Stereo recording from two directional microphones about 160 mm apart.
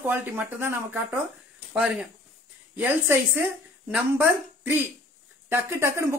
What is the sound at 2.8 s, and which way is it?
Speech, 10° right (ahead or behind).